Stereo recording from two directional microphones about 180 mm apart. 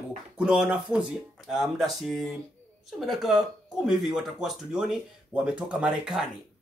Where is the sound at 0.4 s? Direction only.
5° right (ahead or behind).